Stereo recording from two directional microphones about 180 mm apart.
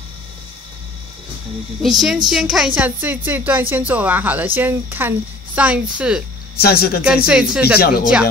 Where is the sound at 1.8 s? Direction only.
Centre (ahead or behind).